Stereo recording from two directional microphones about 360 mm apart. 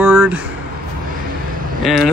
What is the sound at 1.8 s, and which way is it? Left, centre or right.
Speech, centre.